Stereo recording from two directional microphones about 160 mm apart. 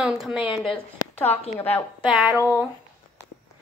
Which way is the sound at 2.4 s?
10° right (ahead or behind).